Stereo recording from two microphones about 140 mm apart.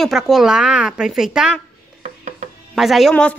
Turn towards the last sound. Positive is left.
turn(degrees=5)  # may be behind; listen again after turning